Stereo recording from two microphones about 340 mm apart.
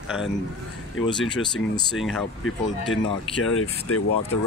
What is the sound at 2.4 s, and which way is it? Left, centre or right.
Speech, left.